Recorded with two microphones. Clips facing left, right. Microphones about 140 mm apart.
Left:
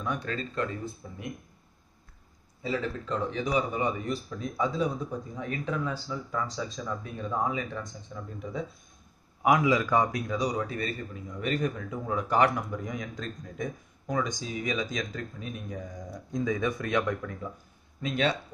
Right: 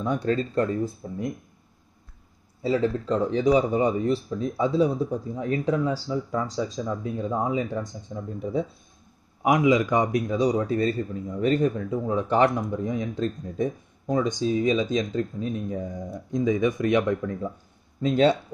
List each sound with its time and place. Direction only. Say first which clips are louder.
0.0 s speech: right 8 dB; 30° right (ahead or behind)
2.6 s speech: right 8 dB; 35° right (ahead or behind)
9.4 s speech: right 4 dB; 20° right (ahead or behind)